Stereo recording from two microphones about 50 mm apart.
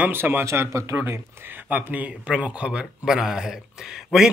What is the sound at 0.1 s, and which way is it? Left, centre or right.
Speech, right.